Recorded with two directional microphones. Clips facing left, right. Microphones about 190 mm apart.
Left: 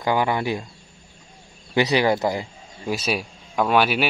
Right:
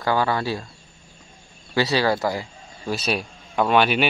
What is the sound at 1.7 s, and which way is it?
Speech, 20° left (ahead or behind).